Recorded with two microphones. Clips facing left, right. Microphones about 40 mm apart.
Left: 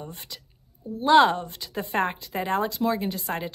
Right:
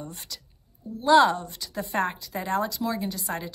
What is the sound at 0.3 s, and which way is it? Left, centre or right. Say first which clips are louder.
A woman's voice: even; left.